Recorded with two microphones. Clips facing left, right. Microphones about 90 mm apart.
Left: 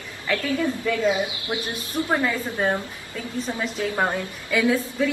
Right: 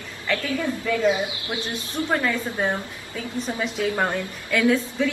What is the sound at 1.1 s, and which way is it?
Speech, 25° left (ahead or behind).